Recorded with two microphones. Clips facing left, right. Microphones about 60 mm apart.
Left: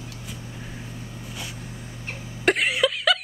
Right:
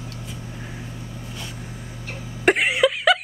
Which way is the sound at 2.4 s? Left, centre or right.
Centre.